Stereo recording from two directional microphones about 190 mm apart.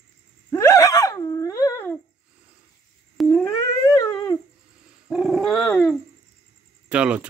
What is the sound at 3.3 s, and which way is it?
Howl, 15° left (ahead or behind).